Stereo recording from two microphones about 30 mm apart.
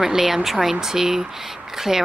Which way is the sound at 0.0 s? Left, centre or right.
Centre.